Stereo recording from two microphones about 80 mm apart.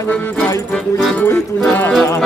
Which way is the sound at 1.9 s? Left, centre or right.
Centre.